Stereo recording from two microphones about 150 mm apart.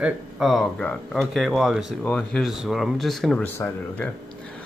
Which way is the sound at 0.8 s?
5° left (ahead or behind).